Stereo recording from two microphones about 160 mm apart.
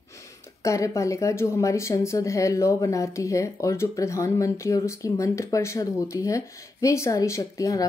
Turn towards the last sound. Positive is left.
turn(degrees=20)  # may be behind; listen again after turning